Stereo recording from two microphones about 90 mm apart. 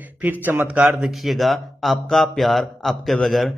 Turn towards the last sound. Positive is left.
turn(degrees=0)  # may be behind; listen again after turning